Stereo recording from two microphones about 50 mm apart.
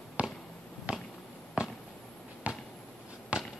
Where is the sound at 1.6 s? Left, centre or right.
Centre.